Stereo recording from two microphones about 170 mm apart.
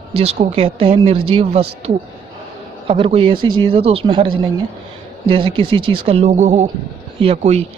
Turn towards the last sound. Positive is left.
turn(degrees=-35)  # may be behind; listen again after turning